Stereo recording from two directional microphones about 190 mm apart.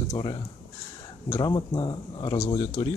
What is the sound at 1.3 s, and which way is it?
Speech, 25° left (ahead or behind).